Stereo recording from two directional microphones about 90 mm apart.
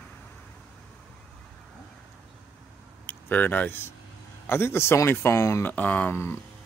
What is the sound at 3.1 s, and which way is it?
Speech, 20° left (ahead or behind).